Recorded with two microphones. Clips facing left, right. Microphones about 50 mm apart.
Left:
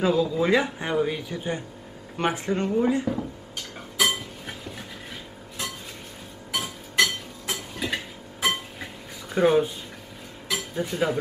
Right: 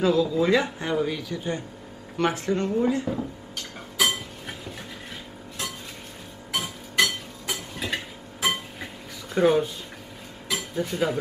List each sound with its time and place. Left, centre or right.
0.0 s speech: centre
3.2 s a sound: centre
6.5 s music: centre
9.3 s speech: centre
10.5 s dishes: centre